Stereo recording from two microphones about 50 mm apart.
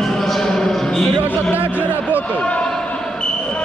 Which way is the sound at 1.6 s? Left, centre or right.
Right.